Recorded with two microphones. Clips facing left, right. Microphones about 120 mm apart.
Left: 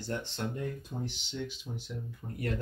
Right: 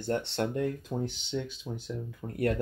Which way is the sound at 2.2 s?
60° right (ahead or behind).